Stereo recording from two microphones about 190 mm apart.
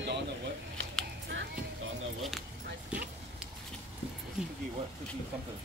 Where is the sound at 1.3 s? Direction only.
90° right.